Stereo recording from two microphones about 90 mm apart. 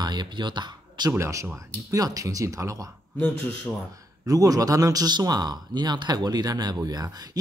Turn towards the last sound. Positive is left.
turn(degrees=-45)  # may be behind; listen again after turning